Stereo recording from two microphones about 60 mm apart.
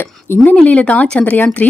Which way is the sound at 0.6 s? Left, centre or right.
Left.